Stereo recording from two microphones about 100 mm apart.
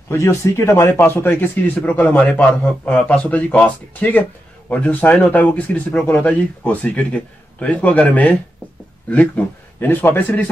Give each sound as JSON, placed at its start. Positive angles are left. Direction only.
{"t": 0.1, "sound": "speech", "side_deg": 30}
{"t": 9.8, "sound": "speech", "side_deg": 20}